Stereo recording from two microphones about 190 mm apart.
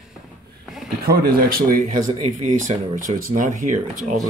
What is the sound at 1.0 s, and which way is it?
Speech, 50° right (ahead or behind).